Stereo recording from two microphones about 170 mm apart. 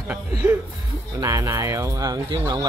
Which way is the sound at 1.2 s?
15° right (ahead or behind).